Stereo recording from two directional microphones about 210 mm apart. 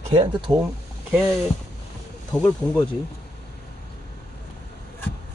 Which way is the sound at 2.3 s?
5° left (ahead or behind).